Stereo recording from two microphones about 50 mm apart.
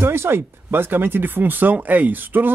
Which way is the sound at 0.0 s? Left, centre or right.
Right.